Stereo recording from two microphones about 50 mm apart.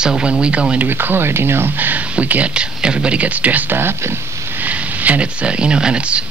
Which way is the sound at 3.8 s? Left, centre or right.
Right.